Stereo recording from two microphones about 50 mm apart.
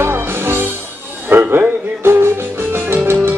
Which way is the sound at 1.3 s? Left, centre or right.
Right.